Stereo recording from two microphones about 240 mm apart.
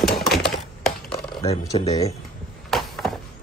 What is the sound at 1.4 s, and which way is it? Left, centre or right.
Speech, left.